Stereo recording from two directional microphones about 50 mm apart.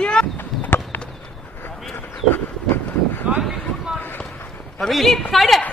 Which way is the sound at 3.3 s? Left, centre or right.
Right.